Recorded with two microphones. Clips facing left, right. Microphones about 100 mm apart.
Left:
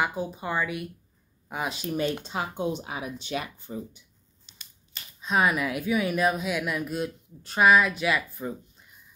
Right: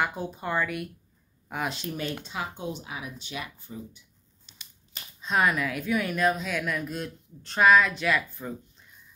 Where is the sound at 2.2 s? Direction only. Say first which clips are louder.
Left 4 dB; 30° left (ahead or behind).